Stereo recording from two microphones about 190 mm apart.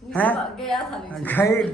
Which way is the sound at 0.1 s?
5° left (ahead or behind).